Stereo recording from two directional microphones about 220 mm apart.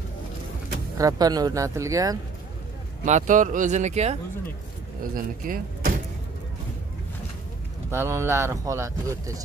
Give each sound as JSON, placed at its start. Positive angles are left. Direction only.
{"t": 0.9, "sound": "speech", "side_deg": -15}
{"t": 3.1, "sound": "speech", "side_deg": -35}
{"t": 5.0, "sound": "speech", "side_deg": -40}
{"t": 7.9, "sound": "speech", "side_deg": -10}